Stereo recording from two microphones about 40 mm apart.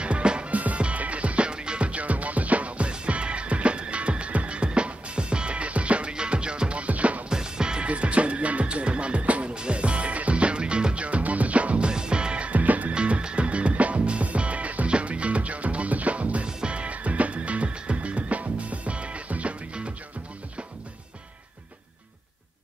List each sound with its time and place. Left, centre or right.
0.0 s music: right
0.5 s music: right
7.2 s music: centre
7.9 s music: right
11.9 s music: right
12.9 s music: right